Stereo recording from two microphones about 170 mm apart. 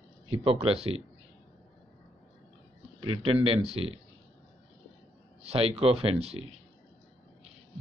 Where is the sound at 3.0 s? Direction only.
30° right (ahead or behind).